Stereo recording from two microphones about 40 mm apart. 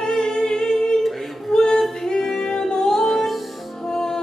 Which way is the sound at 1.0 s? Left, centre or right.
Centre.